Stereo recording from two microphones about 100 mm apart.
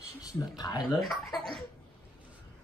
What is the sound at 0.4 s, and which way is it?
Speech, 45° left (ahead or behind).